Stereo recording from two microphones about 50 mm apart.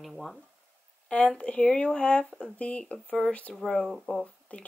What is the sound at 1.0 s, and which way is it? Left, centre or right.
Speech, left.